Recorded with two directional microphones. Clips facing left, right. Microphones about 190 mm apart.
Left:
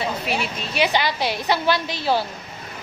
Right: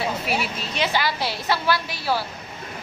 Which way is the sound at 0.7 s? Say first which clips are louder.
Left 3 dB; 15° left (ahead or behind).